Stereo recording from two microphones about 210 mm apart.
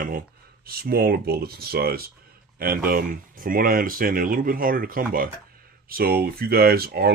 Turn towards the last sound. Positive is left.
turn(degrees=-50)  # may be behind; listen again after turning